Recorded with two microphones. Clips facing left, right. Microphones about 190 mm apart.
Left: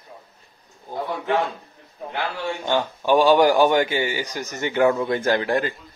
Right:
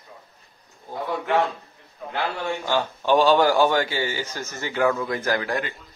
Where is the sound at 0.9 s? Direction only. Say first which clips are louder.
Left 2 dB; 15° left (ahead or behind).